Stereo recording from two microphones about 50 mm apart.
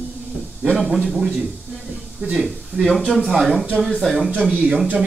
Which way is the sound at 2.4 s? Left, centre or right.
Centre.